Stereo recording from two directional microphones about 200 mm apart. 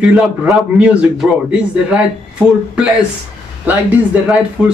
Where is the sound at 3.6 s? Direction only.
5° right (ahead or behind).